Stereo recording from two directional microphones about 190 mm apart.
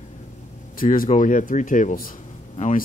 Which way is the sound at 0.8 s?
45° left (ahead or behind).